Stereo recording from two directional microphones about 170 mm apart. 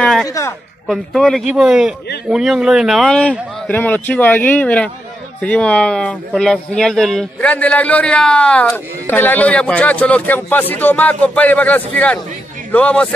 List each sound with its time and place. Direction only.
0.0 s a sound: centre (ahead or behind)
0.3 s speech: 15° left (ahead or behind)
0.8 s speech: centre (ahead or behind)